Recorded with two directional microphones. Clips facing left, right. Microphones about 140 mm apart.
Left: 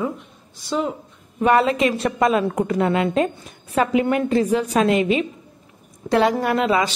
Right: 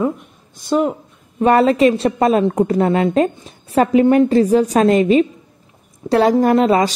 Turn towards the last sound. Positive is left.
turn(degrees=-40)  # may be behind; listen again after turning